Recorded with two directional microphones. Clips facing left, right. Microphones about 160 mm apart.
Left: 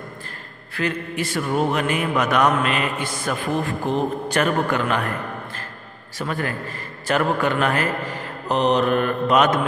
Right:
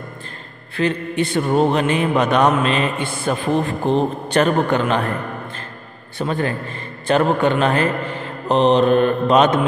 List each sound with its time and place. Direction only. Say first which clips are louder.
0.7 s a man's voice: right 5 dB; 25° right (ahead or behind)
6.1 s a man's voice: right 5 dB; 25° right (ahead or behind)
8.2 s mantra: right 6 dB; 25° right (ahead or behind)